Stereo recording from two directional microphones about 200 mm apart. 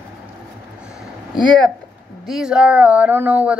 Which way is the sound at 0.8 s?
5° right (ahead or behind).